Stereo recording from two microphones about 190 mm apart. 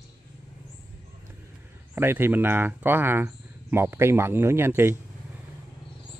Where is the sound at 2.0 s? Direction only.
10° right (ahead or behind).